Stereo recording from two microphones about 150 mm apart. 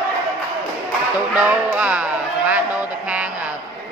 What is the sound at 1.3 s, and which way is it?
Speech, 10° right (ahead or behind).